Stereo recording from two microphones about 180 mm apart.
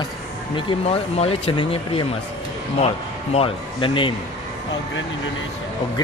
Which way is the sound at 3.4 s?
30° left (ahead or behind).